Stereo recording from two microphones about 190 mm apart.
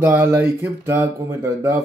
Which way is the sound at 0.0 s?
15° right (ahead or behind).